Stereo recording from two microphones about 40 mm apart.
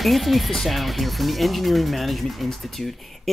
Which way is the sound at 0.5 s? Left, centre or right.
Centre.